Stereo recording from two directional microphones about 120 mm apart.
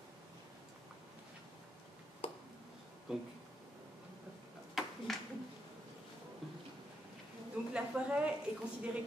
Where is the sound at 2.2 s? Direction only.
50° left (ahead or behind).